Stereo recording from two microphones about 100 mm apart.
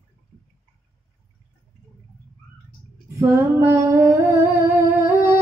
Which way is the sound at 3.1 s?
25° right (ahead or behind).